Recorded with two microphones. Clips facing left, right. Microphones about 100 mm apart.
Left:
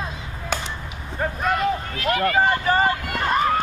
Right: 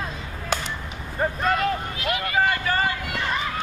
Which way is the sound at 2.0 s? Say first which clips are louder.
Left 5 dB; 50° left (ahead or behind).